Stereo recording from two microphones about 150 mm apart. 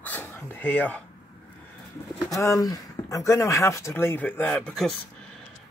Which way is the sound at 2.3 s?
20° left (ahead or behind).